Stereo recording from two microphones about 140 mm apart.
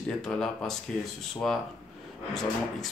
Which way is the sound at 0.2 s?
5° left (ahead or behind).